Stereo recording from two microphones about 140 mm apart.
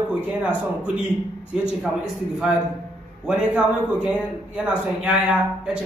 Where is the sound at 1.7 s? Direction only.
5° right (ahead or behind).